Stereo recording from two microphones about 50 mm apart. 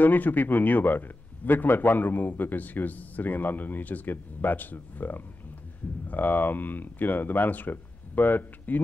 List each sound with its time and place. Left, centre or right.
0.0 s a man's voice: left